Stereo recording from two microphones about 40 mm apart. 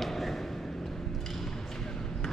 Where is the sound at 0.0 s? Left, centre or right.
Centre.